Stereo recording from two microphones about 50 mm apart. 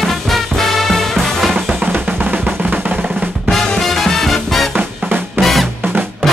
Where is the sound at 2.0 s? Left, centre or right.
Right.